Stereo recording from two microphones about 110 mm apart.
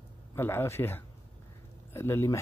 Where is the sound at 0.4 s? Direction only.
20° left (ahead or behind).